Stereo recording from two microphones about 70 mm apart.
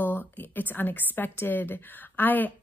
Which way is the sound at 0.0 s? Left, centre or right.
Left.